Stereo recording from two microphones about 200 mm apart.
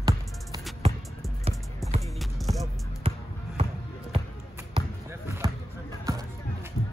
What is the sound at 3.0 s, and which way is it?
Basketball bounce, 25° right (ahead or behind).